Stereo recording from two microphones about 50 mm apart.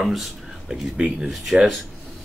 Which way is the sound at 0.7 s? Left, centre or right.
Centre.